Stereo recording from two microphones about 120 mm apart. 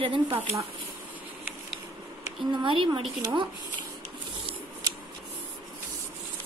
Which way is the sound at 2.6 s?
45° right (ahead or behind).